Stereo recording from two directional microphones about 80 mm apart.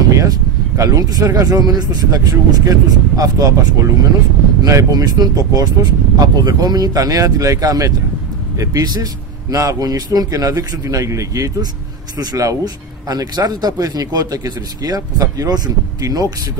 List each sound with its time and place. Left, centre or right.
0.2 s speech: right